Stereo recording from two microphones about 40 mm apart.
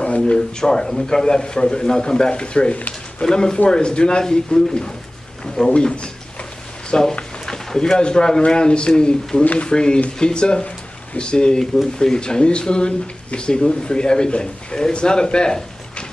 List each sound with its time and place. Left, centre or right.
0.3 s speech: centre